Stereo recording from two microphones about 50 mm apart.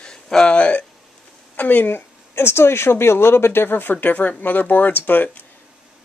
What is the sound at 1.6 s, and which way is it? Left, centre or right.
Speech, left.